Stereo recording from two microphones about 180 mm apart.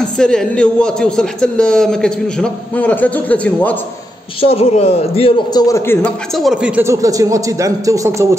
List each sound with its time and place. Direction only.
0.2 s a man's voice: 5° left (ahead or behind)
4.4 s a man's voice: 35° left (ahead or behind); by 6.1 s 15° left (ahead or behind)
6.3 s speech: centre (ahead or behind)